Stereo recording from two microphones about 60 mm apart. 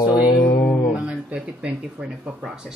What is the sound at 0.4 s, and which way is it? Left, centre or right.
Music, left.